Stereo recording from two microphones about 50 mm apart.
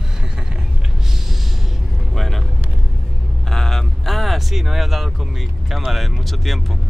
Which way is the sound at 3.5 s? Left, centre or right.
Centre.